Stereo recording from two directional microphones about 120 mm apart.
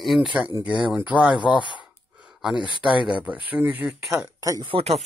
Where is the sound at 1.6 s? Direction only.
40° left (ahead or behind).